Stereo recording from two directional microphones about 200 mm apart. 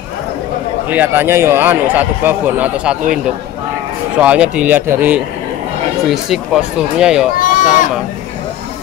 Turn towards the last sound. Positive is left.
turn(degrees=40)  # may be behind; listen again after turning